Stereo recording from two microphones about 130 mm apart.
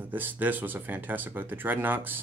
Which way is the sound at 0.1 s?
15° right (ahead or behind).